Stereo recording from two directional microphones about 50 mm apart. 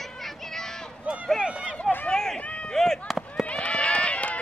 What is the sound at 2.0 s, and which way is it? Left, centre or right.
Run, centre.